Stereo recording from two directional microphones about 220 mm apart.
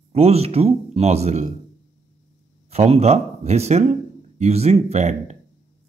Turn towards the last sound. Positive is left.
turn(degrees=-30)  # may be behind; listen again after turning